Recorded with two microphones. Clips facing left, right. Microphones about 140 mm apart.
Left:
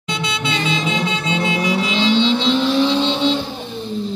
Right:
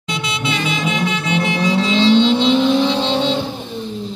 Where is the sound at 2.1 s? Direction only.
5° right (ahead or behind).